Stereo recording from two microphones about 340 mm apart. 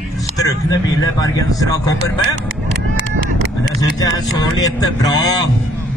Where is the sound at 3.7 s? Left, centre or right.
Centre.